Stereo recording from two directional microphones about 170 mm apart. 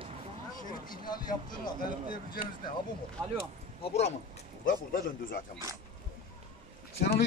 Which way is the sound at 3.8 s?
40° left (ahead or behind).